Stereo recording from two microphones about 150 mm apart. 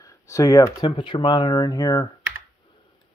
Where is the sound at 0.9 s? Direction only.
30° left (ahead or behind).